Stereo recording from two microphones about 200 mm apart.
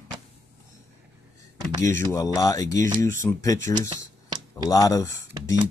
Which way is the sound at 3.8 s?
20° right (ahead or behind).